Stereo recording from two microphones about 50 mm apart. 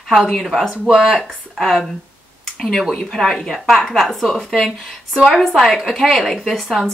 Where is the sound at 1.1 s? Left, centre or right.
Centre.